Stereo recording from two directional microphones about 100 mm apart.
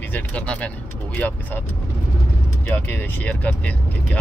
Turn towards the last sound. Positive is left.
turn(degrees=15)  # may be behind; listen again after turning